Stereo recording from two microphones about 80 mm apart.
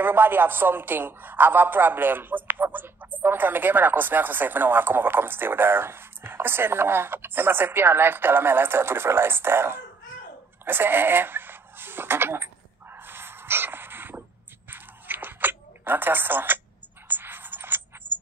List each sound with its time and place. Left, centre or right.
0.0 s speech: right
12.9 s dog: right
14.7 s a sound: right
17.1 s music: right